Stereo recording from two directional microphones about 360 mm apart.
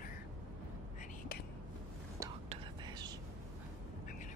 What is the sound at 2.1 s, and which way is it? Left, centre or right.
Whispering, centre.